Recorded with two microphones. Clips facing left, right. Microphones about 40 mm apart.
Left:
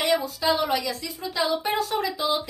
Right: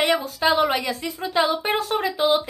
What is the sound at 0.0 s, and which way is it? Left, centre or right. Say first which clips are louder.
A woman's voice: right 3 dB; right.